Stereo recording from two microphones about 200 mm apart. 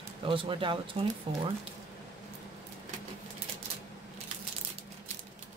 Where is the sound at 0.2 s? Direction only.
25° right (ahead or behind).